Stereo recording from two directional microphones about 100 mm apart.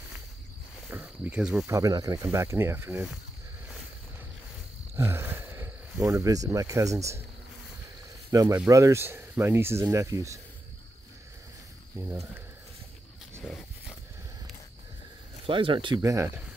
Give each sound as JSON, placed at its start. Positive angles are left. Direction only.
{"t": 0.8, "sound": "speech", "side_deg": -15}
{"t": 1.7, "sound": "speech", "side_deg": -35}
{"t": 2.3, "sound": "speech", "side_deg": -30}
{"t": 4.9, "sound": "a sound", "side_deg": -25}
{"t": 5.9, "sound": "speech", "side_deg": -35}
{"t": 8.3, "sound": "speech", "side_deg": -35}
{"t": 12.0, "sound": "speech", "side_deg": -30}
{"t": 13.4, "sound": "a sound", "side_deg": 0}
{"t": 15.4, "sound": "speech", "side_deg": -60}
{"t": 16.0, "sound": "speech", "side_deg": -30}